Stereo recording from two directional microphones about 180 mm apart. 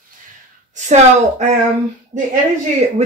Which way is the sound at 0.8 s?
45° right (ahead or behind).